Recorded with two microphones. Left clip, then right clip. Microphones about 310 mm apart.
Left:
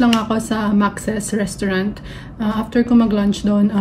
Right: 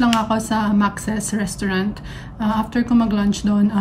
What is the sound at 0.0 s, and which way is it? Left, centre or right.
Speech, centre.